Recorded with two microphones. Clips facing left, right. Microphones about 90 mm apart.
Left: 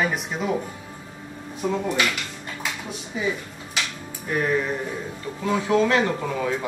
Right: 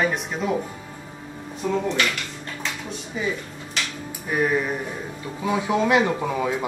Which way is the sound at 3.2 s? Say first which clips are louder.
Left 1 dB; 5° left (ahead or behind).